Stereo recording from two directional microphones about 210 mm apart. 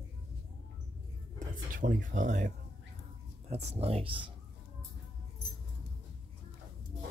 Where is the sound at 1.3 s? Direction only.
40° right (ahead or behind).